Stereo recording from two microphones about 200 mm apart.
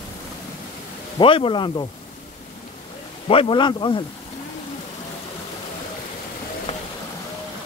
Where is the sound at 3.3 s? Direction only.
25° left (ahead or behind).